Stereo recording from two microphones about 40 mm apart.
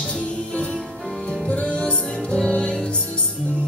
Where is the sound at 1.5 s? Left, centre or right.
Left.